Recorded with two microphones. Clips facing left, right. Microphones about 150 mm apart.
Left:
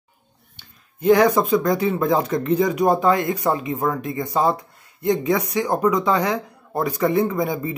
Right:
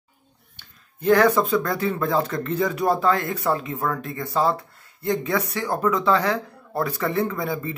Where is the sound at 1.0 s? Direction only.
15° left (ahead or behind).